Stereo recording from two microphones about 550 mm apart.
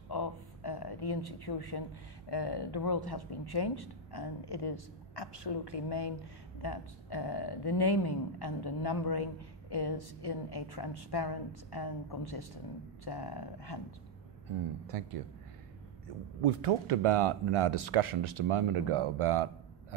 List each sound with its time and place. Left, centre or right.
0.1 s speech: left
14.9 s a man's voice: right
16.4 s speech: right